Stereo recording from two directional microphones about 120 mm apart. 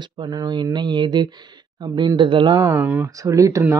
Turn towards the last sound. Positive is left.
turn(degrees=-25)  # may be behind; listen again after turning